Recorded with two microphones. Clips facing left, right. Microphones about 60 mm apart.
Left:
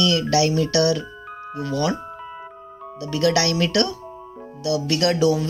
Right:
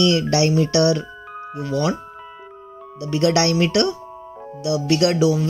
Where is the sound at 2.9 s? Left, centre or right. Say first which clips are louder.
Right 2 dB; right.